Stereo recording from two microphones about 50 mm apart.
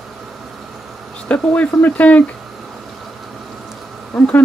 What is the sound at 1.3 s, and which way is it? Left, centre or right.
Speech, left.